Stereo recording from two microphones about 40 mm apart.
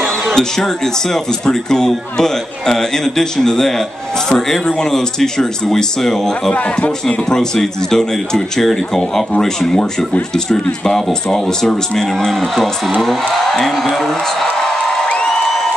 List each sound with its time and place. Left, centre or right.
0.3 s a man's voice: centre
6.5 s a man's voice: left
7.2 s a man's voice: centre
15.2 s a sound: centre